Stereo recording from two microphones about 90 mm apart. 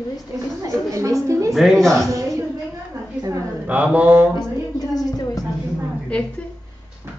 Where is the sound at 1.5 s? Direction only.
Centre (ahead or behind).